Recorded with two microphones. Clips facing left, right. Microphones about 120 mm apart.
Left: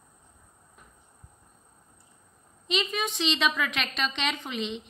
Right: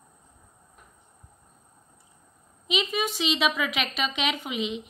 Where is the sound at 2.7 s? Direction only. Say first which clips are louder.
Right 2 dB; 5° right (ahead or behind).